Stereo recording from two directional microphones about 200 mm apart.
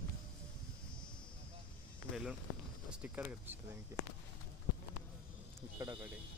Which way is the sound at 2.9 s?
5° right (ahead or behind).